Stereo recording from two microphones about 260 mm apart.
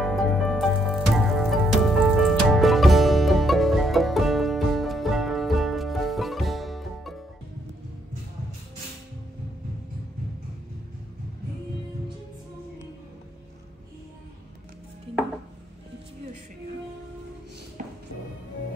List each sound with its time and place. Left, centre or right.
0.0 s music: centre
17.8 s music: right